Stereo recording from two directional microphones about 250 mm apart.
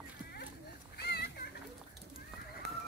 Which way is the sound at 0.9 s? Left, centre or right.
Left.